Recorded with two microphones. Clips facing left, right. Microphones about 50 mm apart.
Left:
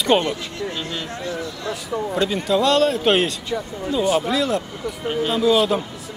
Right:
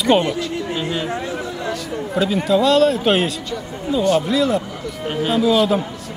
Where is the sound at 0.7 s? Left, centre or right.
Centre.